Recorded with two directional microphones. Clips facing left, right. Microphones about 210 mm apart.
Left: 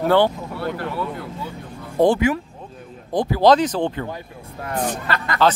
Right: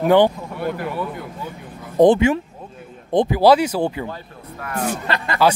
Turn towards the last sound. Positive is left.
turn(degrees=-25)  # may be behind; listen again after turning